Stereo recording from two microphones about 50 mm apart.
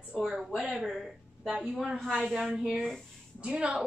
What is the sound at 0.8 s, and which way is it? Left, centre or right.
Speech, centre.